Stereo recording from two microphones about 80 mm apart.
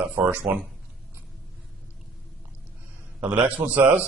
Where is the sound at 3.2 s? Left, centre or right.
Centre.